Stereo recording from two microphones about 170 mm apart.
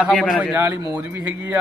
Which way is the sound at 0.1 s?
5° left (ahead or behind).